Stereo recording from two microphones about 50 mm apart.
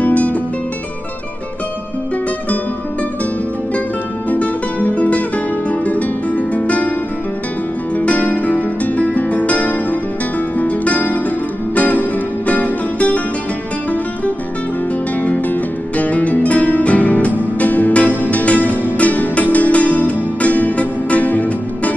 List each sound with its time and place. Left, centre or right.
0.0 s music: left
4.3 s music: left
7.9 s music: left
15.1 s music: left